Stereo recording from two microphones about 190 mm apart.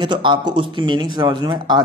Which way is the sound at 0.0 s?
25° right (ahead or behind).